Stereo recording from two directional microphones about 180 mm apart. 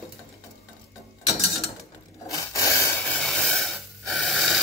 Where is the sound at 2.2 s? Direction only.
20° left (ahead or behind).